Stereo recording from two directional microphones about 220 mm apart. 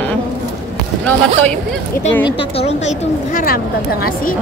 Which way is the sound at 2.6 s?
30° left (ahead or behind).